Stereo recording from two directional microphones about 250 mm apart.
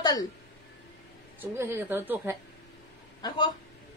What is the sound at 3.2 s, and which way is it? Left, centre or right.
Speech, centre.